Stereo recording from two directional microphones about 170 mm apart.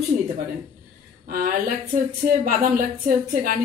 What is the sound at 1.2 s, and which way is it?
A woman's voice, 55° right (ahead or behind).